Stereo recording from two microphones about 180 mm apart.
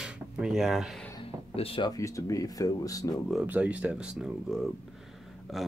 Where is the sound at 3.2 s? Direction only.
5° right (ahead or behind).